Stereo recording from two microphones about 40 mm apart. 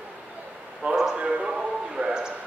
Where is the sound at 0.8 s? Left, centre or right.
Right.